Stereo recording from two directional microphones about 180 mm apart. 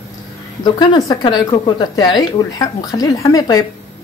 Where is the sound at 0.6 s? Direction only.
25° left (ahead or behind).